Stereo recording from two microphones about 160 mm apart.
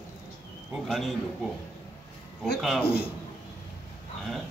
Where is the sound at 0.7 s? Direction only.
Centre (ahead or behind).